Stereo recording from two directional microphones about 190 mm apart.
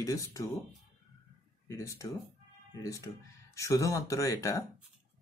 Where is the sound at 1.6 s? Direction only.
15° left (ahead or behind).